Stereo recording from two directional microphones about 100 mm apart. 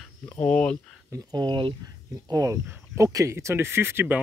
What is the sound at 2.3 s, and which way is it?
Speech, 35° right (ahead or behind).